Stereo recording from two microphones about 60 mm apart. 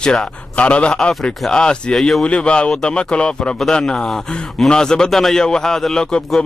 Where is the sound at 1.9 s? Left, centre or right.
Centre.